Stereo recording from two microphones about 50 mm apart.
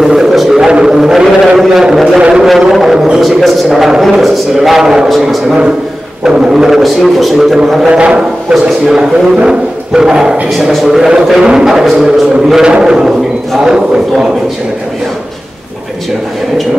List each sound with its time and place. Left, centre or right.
0.0 s a sound: centre
0.8 s vehicle: centre
1.5 s a man's voice: centre
2.7 s a man's voice: centre
6.2 s a man's voice: centre
6.8 s a man's voice: centre
7.9 s a man's voice: centre
8.6 s a man's voice: centre